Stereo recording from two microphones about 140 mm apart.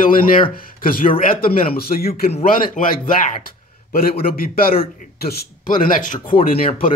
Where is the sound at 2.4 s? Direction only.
80° left.